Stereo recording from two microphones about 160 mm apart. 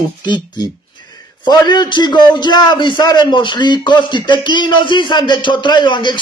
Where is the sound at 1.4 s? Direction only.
25° left (ahead or behind).